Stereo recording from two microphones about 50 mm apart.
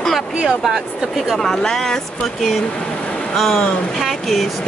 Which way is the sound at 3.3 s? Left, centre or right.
Centre.